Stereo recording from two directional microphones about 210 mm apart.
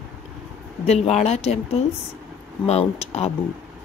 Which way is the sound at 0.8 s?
30° left (ahead or behind).